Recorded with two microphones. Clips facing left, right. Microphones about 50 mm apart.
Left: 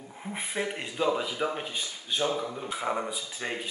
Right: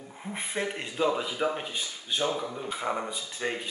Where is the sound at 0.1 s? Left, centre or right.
Centre.